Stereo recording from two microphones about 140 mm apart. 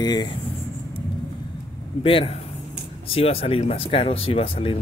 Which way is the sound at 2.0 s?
40° left (ahead or behind).